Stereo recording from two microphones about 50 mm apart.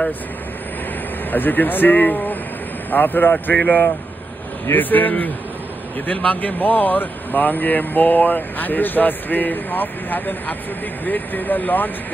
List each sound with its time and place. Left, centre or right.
1.3 s speech: left